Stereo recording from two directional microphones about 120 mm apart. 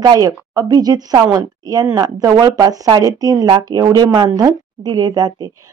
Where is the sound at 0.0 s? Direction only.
35° right (ahead or behind).